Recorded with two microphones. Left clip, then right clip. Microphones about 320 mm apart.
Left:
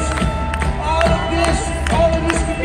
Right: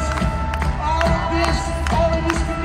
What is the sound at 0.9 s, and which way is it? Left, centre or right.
Music, right.